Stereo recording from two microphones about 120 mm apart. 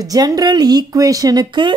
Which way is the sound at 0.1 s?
30° right (ahead or behind).